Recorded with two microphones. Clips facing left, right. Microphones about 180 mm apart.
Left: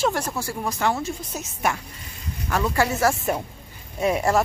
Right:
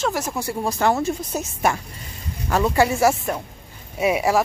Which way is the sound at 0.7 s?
40° right (ahead or behind).